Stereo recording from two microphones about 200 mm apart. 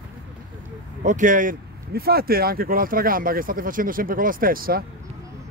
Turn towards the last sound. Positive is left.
turn(degrees=-45)  # may be behind; listen again after turning